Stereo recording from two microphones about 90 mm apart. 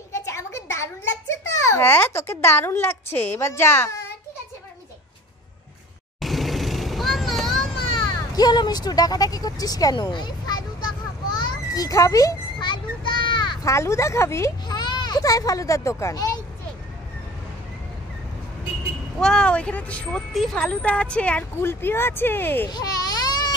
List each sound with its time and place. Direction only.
0.1 s a sound: 35° left (ahead or behind)
1.3 s a child's voice: 30° left (ahead or behind)
6.2 s vehicle: centre (ahead or behind)
7.7 s children playing: 70° left (ahead or behind)
8.4 s speech: 50° left (ahead or behind)
9.9 s a sound: 55° left (ahead or behind)
11.3 s children playing: 55° left (ahead or behind)
11.8 s a woman's voice: 40° left (ahead or behind)
12.5 s children playing: 60° left (ahead or behind)
13.7 s a woman's voice: 35° left (ahead or behind)
14.7 s a child's voice: 55° left (ahead or behind); by 16.3 s 40° left (ahead or behind)
19.1 s speech: 10° left (ahead or behind)
21.5 s speech: 25° left (ahead or behind)
22.7 s baby cry: 45° left (ahead or behind)